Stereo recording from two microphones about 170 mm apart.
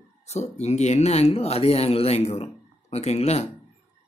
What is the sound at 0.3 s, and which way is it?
Speech, 40° left (ahead or behind).